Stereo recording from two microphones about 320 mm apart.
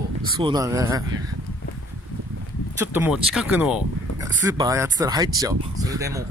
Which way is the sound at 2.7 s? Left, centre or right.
Centre.